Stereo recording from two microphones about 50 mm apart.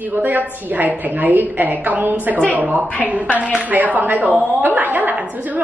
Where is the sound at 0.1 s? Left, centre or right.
Right.